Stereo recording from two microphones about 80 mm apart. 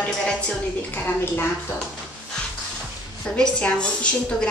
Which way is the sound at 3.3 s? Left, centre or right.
Centre.